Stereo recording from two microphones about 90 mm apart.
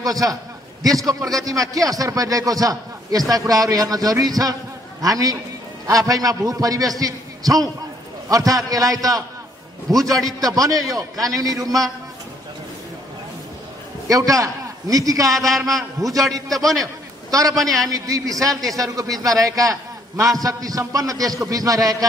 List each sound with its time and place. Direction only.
0.0 s a man's voice: 45° right (ahead or behind)
14.0 s a man's voice: 40° right (ahead or behind)
16.4 s a man's voice: centre (ahead or behind)
16.8 s a sound: 40° right (ahead or behind)
17.6 s a man's voice: 40° right (ahead or behind)